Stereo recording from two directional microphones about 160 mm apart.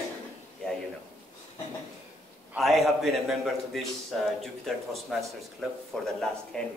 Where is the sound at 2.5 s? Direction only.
Centre (ahead or behind).